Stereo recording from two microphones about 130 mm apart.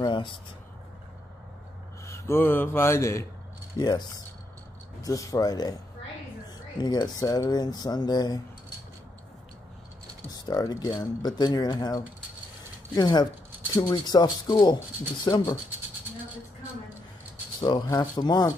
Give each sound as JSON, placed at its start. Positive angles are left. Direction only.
{"t": 0.0, "sound": "a sound", "side_deg": 40}
{"t": 2.0, "sound": "speech", "side_deg": 20}
{"t": 3.7, "sound": "speech", "side_deg": 35}
{"t": 5.0, "sound": "speech", "side_deg": 25}
{"t": 6.8, "sound": "speech", "side_deg": 30}
{"t": 10.3, "sound": "speech", "side_deg": 30}
{"t": 17.6, "sound": "speech", "side_deg": 35}